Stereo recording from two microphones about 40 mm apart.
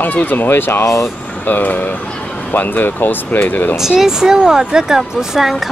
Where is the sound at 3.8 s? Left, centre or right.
Centre.